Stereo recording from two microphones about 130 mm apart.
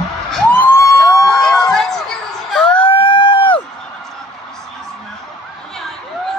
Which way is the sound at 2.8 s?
40° left (ahead or behind).